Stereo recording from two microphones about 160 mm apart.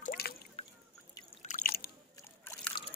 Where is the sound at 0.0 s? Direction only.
70° left (ahead or behind).